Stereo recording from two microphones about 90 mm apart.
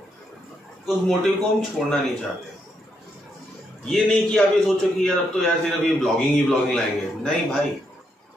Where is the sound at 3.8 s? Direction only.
5° left (ahead or behind).